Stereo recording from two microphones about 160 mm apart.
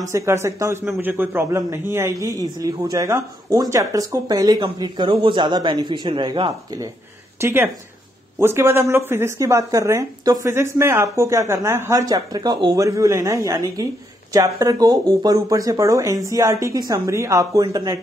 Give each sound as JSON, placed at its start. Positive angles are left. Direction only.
{"t": 0.1, "sound": "a man's voice", "side_deg": -20}
{"t": 7.3, "sound": "a man's voice", "side_deg": -15}